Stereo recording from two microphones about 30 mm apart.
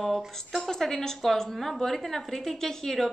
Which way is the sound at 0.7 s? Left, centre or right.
Centre.